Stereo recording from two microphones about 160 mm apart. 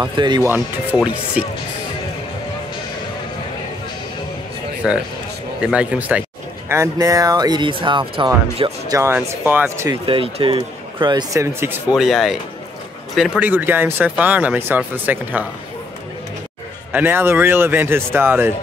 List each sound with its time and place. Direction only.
0.0 s speech: 30° right (ahead or behind)
0.5 s speech: 10° right (ahead or behind)
4.8 s speech: 5° right (ahead or behind)
6.7 s speech: 20° right (ahead or behind); by 8.7 s 35° right (ahead or behind)
8.8 s speech: 20° right (ahead or behind)
10.0 s speech: 35° right (ahead or behind); by 11.7 s 20° right (ahead or behind)
11.9 s speech: centre (ahead or behind)
16.9 s speech: 15° right (ahead or behind)